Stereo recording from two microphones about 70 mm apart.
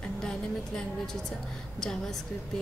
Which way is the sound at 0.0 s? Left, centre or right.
Centre.